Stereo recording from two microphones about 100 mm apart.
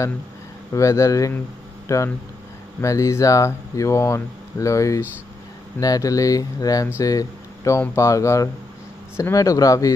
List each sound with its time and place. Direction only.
0.7 s speech: 30° left (ahead or behind)